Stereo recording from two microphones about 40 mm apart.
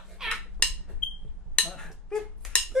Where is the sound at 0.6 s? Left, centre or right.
Left.